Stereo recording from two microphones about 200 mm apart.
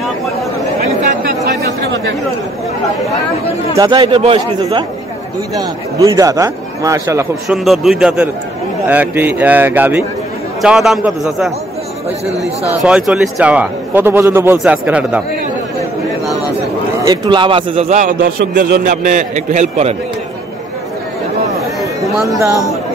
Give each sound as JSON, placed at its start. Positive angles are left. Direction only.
{"t": 1.2, "sound": "chatter", "side_deg": -55}
{"t": 3.7, "sound": "speech", "side_deg": -20}
{"t": 5.5, "sound": "a man's voice", "side_deg": -15}
{"t": 7.4, "sound": "a man's voice", "side_deg": 0}
{"t": 12.8, "sound": "a man's voice", "side_deg": -5}
{"t": 17.0, "sound": "a man's voice", "side_deg": -20}
{"t": 22.3, "sound": "a man's voice", "side_deg": -15}